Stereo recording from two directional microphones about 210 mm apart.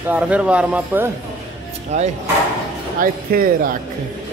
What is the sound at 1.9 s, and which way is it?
Speech, 35° right (ahead or behind).